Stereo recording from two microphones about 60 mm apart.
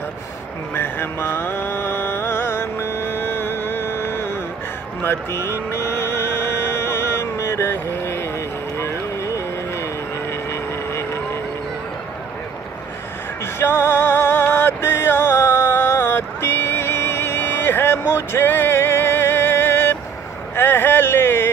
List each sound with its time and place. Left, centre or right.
0.7 s mantra: left
8.7 s vehicle: left
13.6 s music: left
20.5 s a sound: left